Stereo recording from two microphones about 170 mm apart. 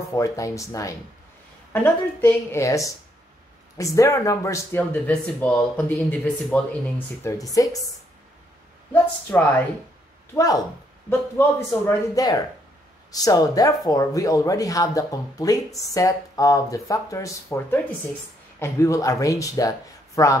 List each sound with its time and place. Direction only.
0.1 s speech: 20° left (ahead or behind)
2.2 s speech: 15° left (ahead or behind)
7.2 s speech: 20° left (ahead or behind)
8.9 s speech: 10° left (ahead or behind)
10.3 s speech: 20° left (ahead or behind)